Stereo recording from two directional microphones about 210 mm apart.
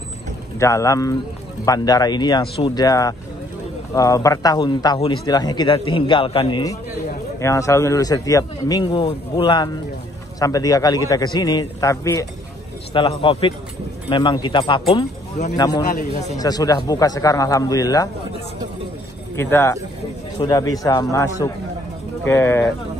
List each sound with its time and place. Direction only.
0.6 s a man's voice: 15° left (ahead or behind)
19.5 s a man's voice: 10° left (ahead or behind)